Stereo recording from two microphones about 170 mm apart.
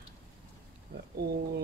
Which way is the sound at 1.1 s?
70° right (ahead or behind).